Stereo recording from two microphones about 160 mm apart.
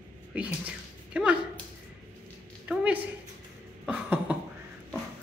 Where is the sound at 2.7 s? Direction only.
10° right (ahead or behind).